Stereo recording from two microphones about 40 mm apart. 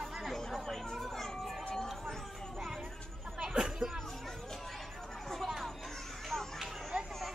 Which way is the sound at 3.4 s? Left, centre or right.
Centre.